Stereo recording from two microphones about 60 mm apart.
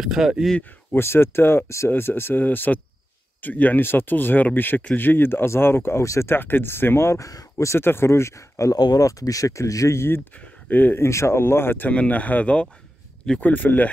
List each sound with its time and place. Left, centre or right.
0.0 s speech: centre
0.9 s speech: left
2.4 s speech: left
7.2 s speech: left
7.5 s speech: left
7.8 s speech: left
9.9 s speech: left
11.0 s speech: left
11.9 s speech: left